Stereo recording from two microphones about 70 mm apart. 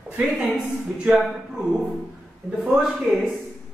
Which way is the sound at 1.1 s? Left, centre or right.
Centre.